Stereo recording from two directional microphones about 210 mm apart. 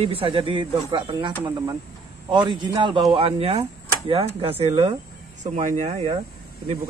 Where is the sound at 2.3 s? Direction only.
20° right (ahead or behind).